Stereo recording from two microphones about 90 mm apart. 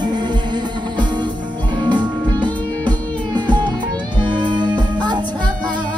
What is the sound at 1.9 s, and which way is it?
Music, 55° right (ahead or behind).